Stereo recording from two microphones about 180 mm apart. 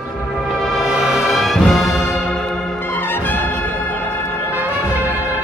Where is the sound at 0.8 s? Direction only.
Centre (ahead or behind).